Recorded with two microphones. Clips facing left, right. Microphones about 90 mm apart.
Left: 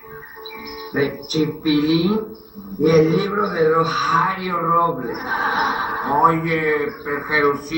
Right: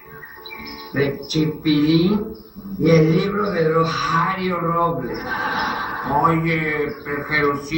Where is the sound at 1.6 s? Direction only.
30° left (ahead or behind).